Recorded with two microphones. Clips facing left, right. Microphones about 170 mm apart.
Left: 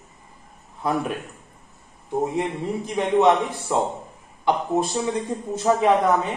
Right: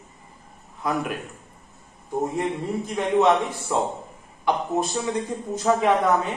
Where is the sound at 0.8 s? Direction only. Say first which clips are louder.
Left 2 dB; 25° left (ahead or behind).